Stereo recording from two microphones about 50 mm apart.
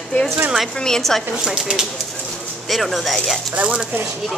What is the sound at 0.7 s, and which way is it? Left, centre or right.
Speech, centre.